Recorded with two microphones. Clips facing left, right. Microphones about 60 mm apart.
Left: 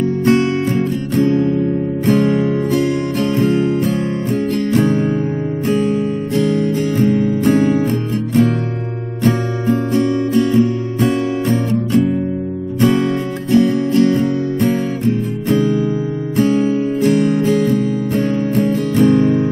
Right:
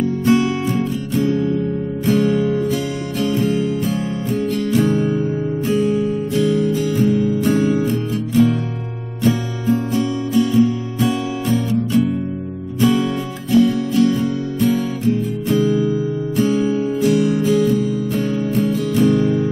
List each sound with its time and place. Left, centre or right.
0.0 s music: left
9.2 s music: left
16.3 s music: left